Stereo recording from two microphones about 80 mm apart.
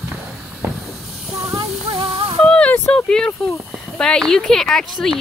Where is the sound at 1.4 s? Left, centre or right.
Right.